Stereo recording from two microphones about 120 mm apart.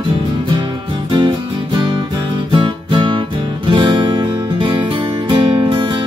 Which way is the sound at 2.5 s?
45° right (ahead or behind).